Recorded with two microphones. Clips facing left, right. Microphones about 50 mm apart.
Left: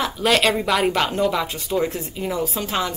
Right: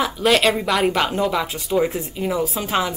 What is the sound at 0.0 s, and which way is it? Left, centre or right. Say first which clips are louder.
A woman's voice: right 2 dB; centre.